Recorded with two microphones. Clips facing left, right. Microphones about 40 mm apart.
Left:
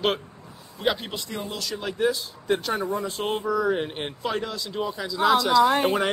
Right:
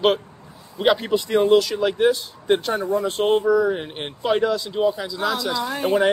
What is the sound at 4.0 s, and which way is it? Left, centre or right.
Speech, centre.